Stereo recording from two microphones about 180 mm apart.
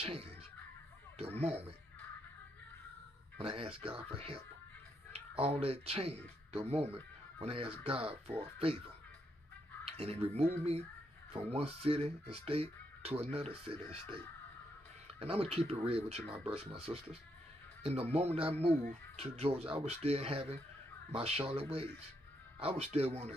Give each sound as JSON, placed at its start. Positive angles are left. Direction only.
{"t": 0.0, "sound": "speech", "side_deg": -35}
{"t": 1.4, "sound": "speech", "side_deg": -35}
{"t": 3.3, "sound": "speech", "side_deg": -30}
{"t": 9.8, "sound": "speech", "side_deg": -35}
{"t": 15.1, "sound": "speech", "side_deg": -35}